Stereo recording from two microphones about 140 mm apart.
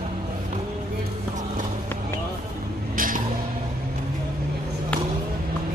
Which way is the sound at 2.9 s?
75° right (ahead or behind).